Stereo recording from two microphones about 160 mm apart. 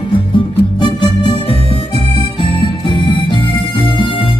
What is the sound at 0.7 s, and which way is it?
Music, 30° left (ahead or behind).